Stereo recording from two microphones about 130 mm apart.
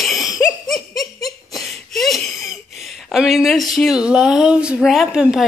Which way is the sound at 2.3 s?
Centre (ahead or behind).